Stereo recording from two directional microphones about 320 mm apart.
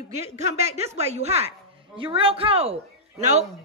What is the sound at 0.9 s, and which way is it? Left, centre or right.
A woman's voice, centre.